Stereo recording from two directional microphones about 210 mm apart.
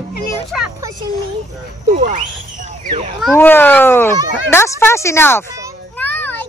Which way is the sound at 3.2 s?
10° left (ahead or behind).